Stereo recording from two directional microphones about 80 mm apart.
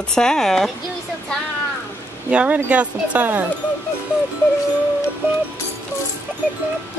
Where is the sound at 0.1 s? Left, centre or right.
Centre.